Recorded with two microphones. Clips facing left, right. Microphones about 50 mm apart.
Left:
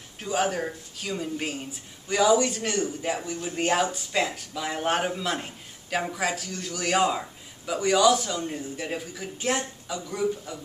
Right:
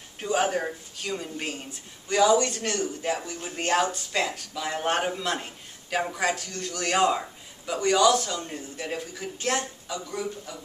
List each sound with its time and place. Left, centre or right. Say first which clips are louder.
0.2 s speech: right 1 dB; centre